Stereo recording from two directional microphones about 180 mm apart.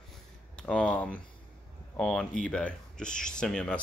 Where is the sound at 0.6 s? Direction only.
5° left (ahead or behind).